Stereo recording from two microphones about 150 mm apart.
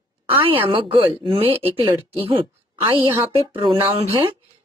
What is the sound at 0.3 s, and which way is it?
A woman's voice, 35° right (ahead or behind).